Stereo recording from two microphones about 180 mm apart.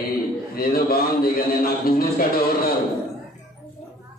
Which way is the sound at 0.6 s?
55° left (ahead or behind).